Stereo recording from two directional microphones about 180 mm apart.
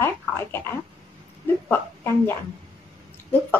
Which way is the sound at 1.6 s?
10° left (ahead or behind).